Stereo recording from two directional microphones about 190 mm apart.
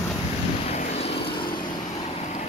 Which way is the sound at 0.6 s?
35° left (ahead or behind).